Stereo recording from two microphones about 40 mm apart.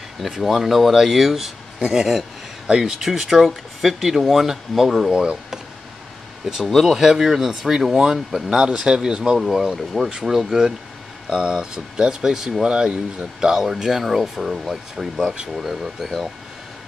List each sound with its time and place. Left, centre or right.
0.2 s speech: centre
5.1 s speech: right
6.5 s speech: centre
9.4 s speech: centre